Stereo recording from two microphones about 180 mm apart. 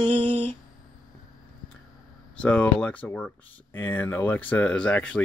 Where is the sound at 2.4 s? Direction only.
5° left (ahead or behind).